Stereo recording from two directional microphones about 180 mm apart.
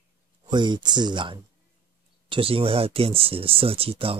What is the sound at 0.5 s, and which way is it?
Speech, 25° right (ahead or behind).